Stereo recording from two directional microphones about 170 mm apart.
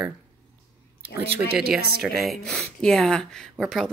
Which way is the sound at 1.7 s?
65° right (ahead or behind).